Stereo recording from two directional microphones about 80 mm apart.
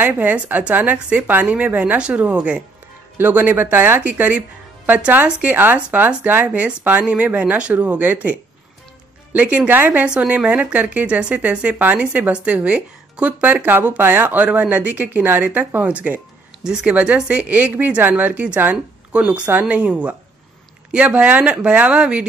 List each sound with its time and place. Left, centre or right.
0.0 s speech: right